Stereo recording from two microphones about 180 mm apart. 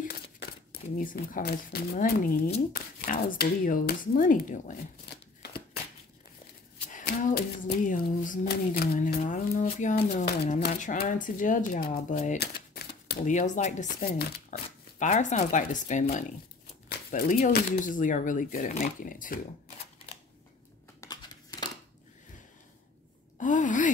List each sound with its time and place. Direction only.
0.9 s speech: 50° left (ahead or behind)
6.9 s speech: 45° left (ahead or behind)
12.4 s typewriter: 60° left (ahead or behind)
13.2 s speech: 40° left (ahead or behind); by 14.6 s 60° left (ahead or behind)
15.0 s speech: 40° left (ahead or behind)
21.0 s a sound: 20° left (ahead or behind)
23.3 s a sound: 45° left (ahead or behind)